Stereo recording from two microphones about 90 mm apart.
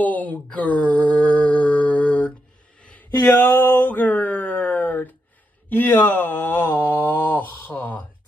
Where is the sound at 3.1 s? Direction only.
30° left (ahead or behind).